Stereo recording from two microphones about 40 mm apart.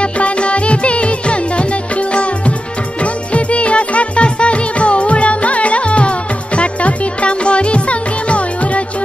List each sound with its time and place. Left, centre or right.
0.0 s music: left